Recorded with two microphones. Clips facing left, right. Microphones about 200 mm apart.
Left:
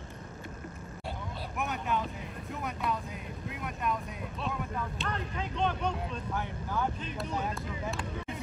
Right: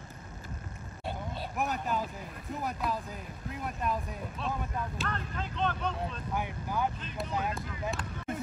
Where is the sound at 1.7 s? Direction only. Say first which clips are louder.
Left 3 dB; 35° right (ahead or behind).